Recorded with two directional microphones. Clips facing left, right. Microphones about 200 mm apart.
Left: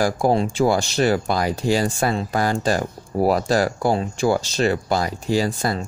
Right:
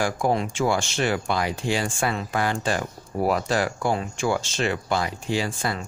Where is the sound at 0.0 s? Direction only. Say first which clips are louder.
Left 4 dB; 35° left (ahead or behind).